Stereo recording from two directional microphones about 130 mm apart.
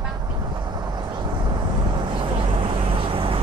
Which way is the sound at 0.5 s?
35° right (ahead or behind).